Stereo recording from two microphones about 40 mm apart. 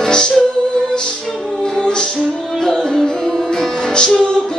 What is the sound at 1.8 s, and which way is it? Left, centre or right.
Music, left.